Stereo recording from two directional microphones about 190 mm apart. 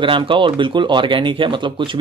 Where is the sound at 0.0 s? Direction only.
25° right (ahead or behind).